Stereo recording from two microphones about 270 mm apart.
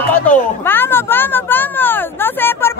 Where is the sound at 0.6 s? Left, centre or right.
Centre.